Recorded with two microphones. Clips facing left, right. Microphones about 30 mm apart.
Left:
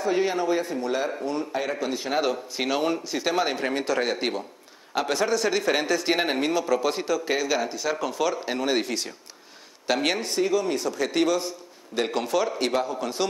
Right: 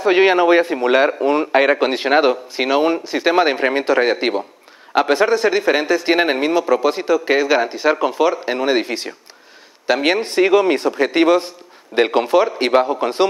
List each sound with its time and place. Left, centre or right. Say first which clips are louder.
0.0 s a man's voice: right 11 dB; right
2.3 s a man's voice: right 9 dB; right
10.2 s a man's voice: right 10 dB; right